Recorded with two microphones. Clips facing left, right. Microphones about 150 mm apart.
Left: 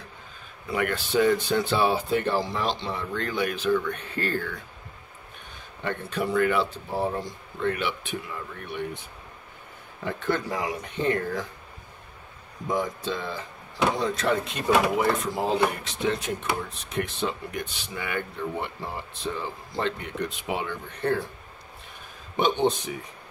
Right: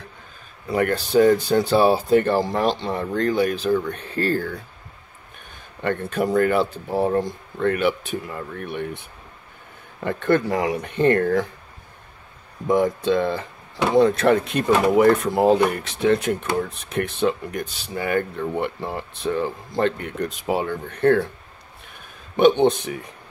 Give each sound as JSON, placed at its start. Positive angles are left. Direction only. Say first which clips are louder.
{"t": 0.7, "sound": "speech", "louder": "right 6 dB", "side_deg": -35}
{"t": 5.9, "sound": "speech", "louder": "right 6 dB", "side_deg": -50}
{"t": 7.0, "sound": "speech", "louder": "right 8 dB", "side_deg": -55}
{"t": 10.0, "sound": "speech", "louder": "right 7 dB", "side_deg": -60}
{"t": 12.6, "sound": "speech", "louder": "right 9 dB", "side_deg": -60}
{"t": 18.6, "sound": "speech", "louder": "right 7 dB", "side_deg": -60}
{"t": 22.4, "sound": "speech", "louder": "right 8 dB", "side_deg": -60}